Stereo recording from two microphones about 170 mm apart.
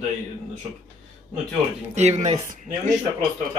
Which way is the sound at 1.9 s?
40° right (ahead or behind).